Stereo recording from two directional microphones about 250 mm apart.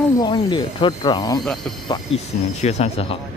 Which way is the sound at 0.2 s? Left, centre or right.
Centre.